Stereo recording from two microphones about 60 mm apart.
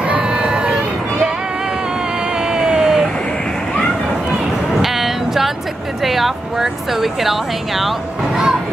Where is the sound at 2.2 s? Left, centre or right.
Centre.